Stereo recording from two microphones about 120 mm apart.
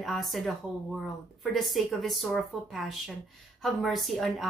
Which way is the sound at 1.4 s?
Centre (ahead or behind).